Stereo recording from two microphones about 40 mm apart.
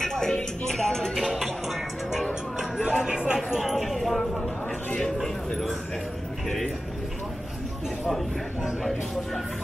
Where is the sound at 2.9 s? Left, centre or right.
Right.